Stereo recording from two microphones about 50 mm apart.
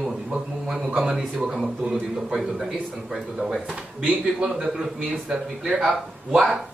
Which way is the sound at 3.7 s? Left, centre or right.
Right.